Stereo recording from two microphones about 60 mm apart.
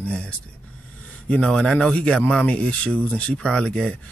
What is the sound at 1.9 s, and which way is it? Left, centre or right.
Speech, left.